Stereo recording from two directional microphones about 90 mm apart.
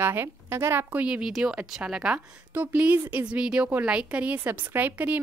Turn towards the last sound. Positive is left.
turn(degrees=-20)  # may be behind; listen again after turning